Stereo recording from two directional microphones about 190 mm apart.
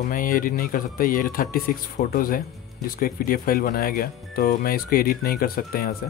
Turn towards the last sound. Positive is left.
turn(degrees=50)  # may be behind; listen again after turning